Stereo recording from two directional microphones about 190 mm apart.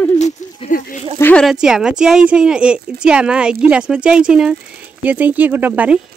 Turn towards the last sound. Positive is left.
turn(degrees=-10)  # may be behind; listen again after turning